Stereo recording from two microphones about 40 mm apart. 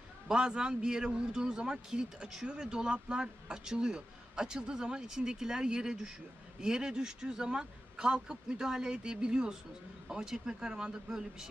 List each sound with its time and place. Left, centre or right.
0.3 s speech: right